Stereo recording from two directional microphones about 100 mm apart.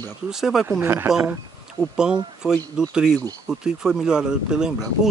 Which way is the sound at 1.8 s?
5° right (ahead or behind).